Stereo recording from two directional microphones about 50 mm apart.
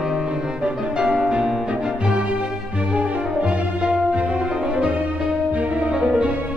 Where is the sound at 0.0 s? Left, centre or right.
Centre.